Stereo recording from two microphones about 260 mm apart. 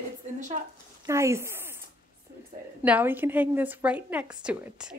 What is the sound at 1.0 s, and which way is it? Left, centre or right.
Speech, centre.